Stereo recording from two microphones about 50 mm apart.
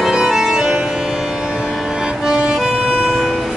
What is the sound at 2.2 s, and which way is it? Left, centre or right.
Music, centre.